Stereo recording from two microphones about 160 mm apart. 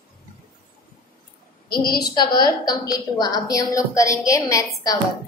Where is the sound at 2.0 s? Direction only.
25° left (ahead or behind).